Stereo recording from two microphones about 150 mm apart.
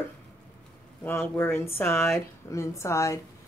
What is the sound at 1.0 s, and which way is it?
Speech, 15° left (ahead or behind).